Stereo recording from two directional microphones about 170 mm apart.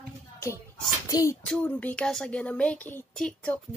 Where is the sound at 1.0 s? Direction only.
20° left (ahead or behind).